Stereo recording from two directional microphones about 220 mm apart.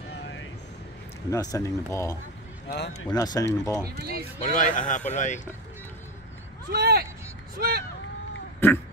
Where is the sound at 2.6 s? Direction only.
45° left (ahead or behind).